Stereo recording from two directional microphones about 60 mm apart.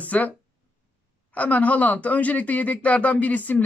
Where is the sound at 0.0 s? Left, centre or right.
Left.